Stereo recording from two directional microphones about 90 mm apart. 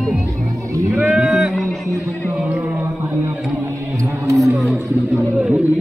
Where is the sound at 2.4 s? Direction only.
15° right (ahead or behind).